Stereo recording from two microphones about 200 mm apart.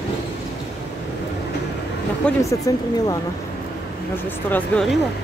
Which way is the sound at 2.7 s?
15° left (ahead or behind).